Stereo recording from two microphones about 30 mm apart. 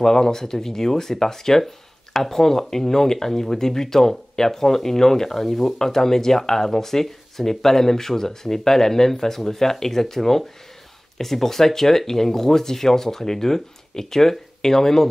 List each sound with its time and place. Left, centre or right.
0.0 s speech: centre